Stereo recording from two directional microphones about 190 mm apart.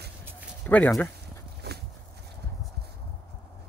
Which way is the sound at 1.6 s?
60° right (ahead or behind).